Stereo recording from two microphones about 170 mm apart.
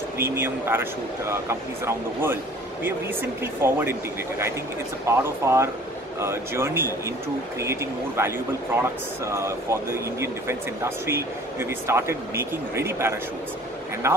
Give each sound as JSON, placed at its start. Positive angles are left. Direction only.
{"t": 0.2, "sound": "speech", "side_deg": -15}
{"t": 5.0, "sound": "speech", "side_deg": -15}